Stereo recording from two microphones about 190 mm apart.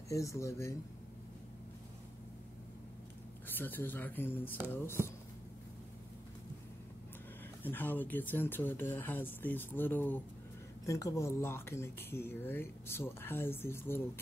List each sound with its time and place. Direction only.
0.1 s speech: 15° left (ahead or behind)
3.4 s speech: 10° left (ahead or behind)
7.6 s speech: 10° left (ahead or behind)